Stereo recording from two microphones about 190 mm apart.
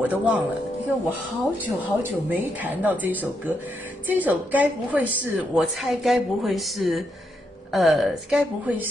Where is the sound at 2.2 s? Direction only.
10° right (ahead or behind).